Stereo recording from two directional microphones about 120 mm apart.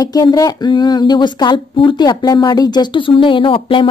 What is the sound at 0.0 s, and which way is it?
Speech, 30° left (ahead or behind).